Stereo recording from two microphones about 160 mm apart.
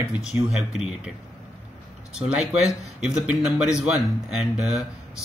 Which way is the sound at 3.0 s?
5° right (ahead or behind).